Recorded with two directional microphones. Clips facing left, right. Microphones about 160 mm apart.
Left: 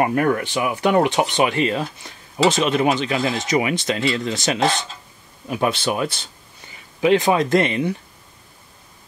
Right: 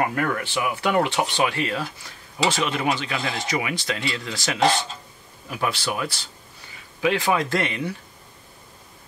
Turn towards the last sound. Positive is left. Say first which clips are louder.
# left 7 dB
turn(degrees=20)  # may be behind; listen again after turning